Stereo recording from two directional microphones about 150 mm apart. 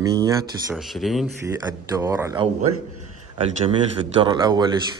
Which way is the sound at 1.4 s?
20° right (ahead or behind).